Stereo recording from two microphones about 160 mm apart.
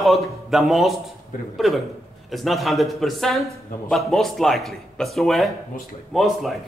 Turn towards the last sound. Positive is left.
turn(degrees=0)  # may be behind; listen again after turning